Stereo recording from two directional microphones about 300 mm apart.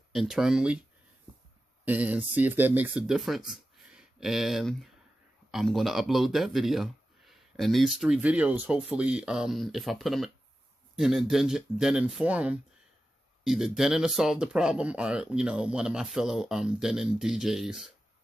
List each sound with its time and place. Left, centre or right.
0.1 s speech: centre
1.9 s speech: centre